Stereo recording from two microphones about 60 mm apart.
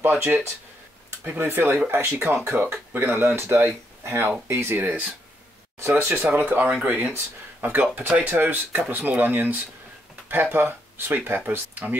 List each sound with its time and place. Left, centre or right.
0.0 s speech: right
1.4 s speech: right
4.7 s speech: right